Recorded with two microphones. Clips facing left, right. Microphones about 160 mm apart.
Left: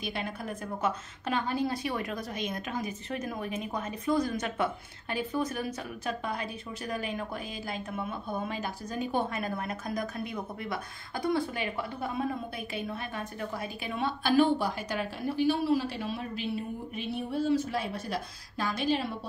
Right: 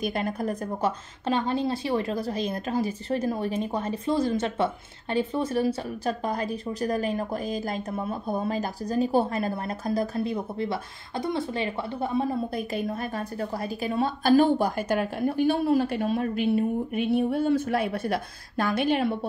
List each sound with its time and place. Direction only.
0.0 s a woman's voice: 45° right (ahead or behind)